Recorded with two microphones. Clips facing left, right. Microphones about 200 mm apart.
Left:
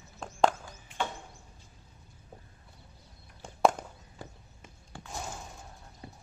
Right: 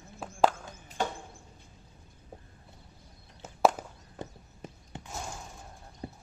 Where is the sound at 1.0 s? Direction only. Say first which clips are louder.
Right 2 dB; 40° right (ahead or behind).